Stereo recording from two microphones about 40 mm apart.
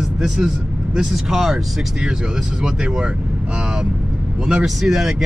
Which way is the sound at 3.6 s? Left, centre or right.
Right.